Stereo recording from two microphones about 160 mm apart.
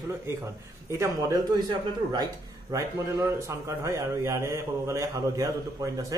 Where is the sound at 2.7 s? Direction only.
20° right (ahead or behind).